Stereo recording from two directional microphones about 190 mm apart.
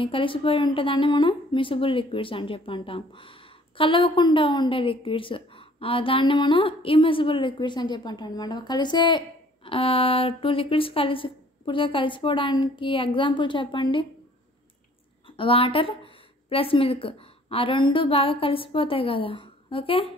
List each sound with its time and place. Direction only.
0.0 s speech: 25° left (ahead or behind)
15.2 s a woman's voice: 25° left (ahead or behind)